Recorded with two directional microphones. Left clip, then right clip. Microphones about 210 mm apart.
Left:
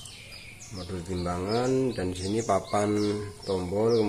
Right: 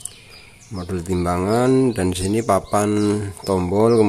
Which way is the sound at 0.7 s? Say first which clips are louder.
Right 11 dB; 50° right (ahead or behind).